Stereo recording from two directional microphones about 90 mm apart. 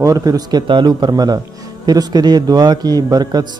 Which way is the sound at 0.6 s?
60° right (ahead or behind).